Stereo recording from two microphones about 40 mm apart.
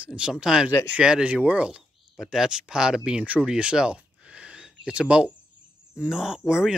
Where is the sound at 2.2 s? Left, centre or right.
Centre.